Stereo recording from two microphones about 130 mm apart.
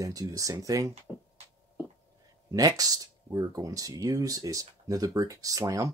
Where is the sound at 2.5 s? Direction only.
30° right (ahead or behind).